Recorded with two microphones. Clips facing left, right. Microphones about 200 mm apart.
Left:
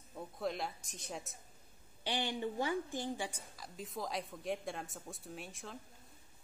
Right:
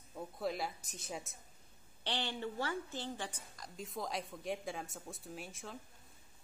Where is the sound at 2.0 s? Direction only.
10° left (ahead or behind).